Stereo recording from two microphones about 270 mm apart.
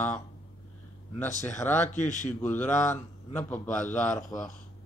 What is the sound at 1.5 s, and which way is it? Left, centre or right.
Speech, centre.